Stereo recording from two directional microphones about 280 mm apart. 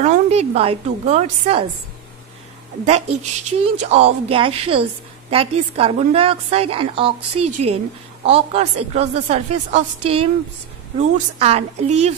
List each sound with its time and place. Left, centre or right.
0.0 s a woman's voice: right
2.9 s a woman's voice: right